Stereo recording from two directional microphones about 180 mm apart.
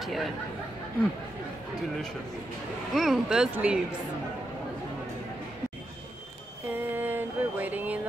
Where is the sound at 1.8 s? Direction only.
Centre (ahead or behind).